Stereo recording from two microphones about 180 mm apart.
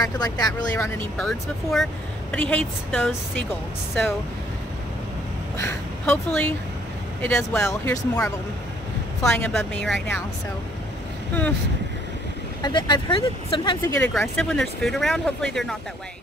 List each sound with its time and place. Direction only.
0.0 s speech: 20° left (ahead or behind)
1.2 s speech: centre (ahead or behind)
5.6 s speech: 10° left (ahead or behind)
12.6 s speech: 25° left (ahead or behind)
13.8 s speech: 15° left (ahead or behind)